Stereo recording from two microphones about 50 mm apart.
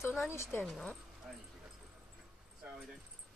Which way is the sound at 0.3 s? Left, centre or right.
Left.